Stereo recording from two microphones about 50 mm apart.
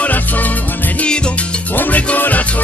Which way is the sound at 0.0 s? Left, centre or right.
Left.